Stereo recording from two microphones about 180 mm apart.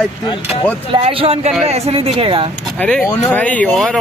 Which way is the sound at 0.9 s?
30° right (ahead or behind).